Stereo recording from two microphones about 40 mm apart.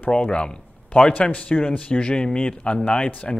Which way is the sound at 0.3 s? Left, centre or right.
Left.